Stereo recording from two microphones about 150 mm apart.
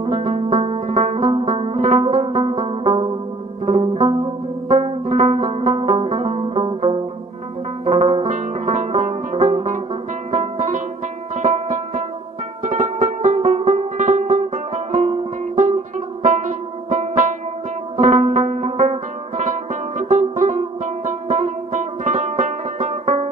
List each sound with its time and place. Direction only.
0.0 s music: 50° right (ahead or behind)
4.6 s music: 50° right (ahead or behind)
13.7 s music: 60° right (ahead or behind)
14.0 s music: 45° right (ahead or behind)